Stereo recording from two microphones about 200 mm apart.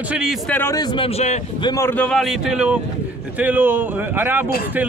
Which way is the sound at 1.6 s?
15° left (ahead or behind).